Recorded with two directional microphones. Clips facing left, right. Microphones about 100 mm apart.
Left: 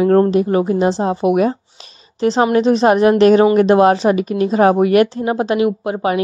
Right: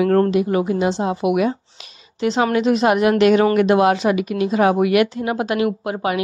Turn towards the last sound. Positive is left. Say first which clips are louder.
# left 4 dB
turn(degrees=30)  # may be behind; listen again after turning